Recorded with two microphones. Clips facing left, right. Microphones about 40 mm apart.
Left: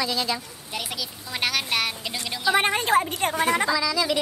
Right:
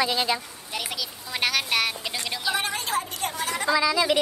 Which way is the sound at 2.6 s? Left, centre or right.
Left.